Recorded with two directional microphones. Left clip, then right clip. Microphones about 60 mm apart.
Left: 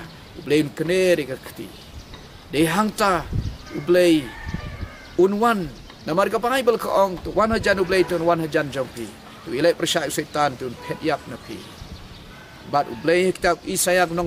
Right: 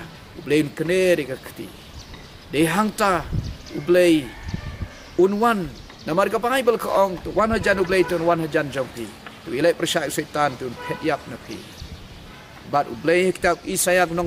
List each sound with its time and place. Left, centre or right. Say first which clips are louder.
0.5 s speech: even; centre
2.5 s speech: even; centre
5.4 s speech: even; centre
12.7 s speech: even; centre